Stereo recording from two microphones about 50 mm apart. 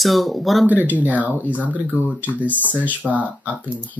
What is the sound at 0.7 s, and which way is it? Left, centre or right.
Speech, right.